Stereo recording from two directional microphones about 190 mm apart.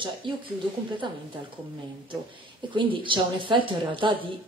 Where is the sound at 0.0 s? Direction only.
25° right (ahead or behind).